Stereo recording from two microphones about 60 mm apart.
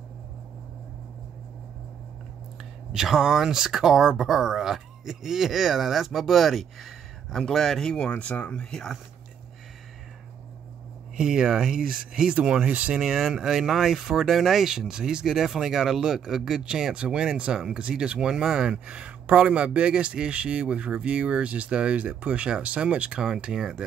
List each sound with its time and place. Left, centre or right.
2.9 s speech: centre
8.1 s speech: left
8.6 s speech: centre
11.1 s speech: centre
13.0 s speech: centre